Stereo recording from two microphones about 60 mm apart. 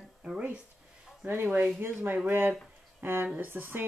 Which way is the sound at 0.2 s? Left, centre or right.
Centre.